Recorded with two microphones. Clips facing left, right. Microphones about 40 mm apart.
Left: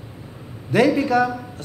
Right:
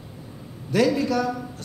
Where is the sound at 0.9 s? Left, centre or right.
Left.